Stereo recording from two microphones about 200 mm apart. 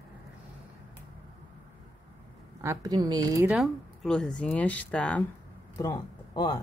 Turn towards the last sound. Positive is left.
turn(degrees=20)  # may be behind; listen again after turning